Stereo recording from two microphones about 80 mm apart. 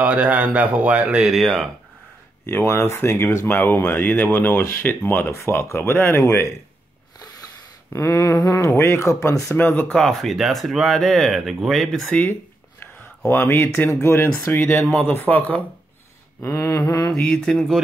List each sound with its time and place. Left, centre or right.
0.0 s a man's voice: centre
1.2 s speech: centre
2.4 s speech: left
7.9 s speech: left
9.6 s speech: left
9.8 s speech: centre
12.1 s speech: centre
13.3 s speech: left
16.4 s speech: left
17.2 s mantra: centre
17.6 s speech: centre